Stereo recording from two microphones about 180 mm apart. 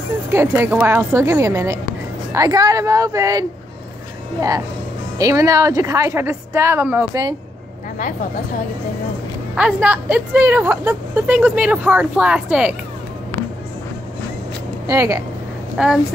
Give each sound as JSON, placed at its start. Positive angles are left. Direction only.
{"t": 0.3, "sound": "a woman's voice", "side_deg": -15}
{"t": 5.2, "sound": "a woman's voice", "side_deg": -20}
{"t": 9.6, "sound": "a woman's voice", "side_deg": -5}
{"t": 14.9, "sound": "a woman's voice", "side_deg": -15}
{"t": 15.8, "sound": "speech", "side_deg": -5}